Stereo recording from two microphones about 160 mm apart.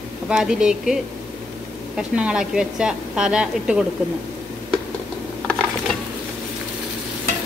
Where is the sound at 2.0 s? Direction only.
5° right (ahead or behind).